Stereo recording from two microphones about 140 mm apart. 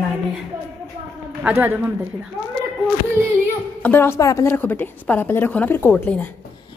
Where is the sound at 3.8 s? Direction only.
15° left (ahead or behind).